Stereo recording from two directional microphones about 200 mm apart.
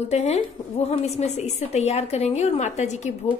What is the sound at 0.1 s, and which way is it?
A woman's voice, 35° left (ahead or behind).